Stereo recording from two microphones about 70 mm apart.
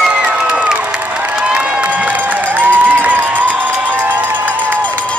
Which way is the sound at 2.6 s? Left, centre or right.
Right.